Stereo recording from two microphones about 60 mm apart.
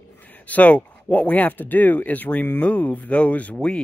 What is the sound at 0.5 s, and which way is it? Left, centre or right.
Speech, left.